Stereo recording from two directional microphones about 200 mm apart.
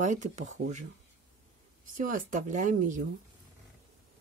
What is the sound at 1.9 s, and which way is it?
Speech, 40° right (ahead or behind).